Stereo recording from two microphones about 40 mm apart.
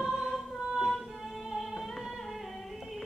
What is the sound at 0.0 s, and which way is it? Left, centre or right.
Music, centre.